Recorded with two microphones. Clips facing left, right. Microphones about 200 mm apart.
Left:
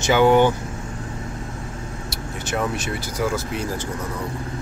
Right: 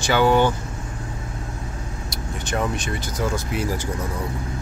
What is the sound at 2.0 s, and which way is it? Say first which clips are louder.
Speech: even; 5° left (ahead or behind).